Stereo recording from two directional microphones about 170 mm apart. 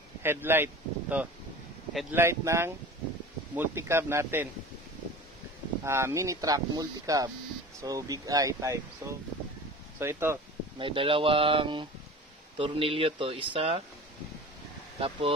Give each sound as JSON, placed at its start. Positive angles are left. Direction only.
{"t": 0.2, "sound": "speech", "side_deg": -15}
{"t": 5.9, "sound": "speech", "side_deg": -15}
{"t": 10.8, "sound": "speech", "side_deg": -30}
{"t": 15.0, "sound": "speech", "side_deg": -35}